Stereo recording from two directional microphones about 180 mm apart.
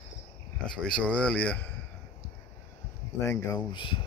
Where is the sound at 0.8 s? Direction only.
5° left (ahead or behind).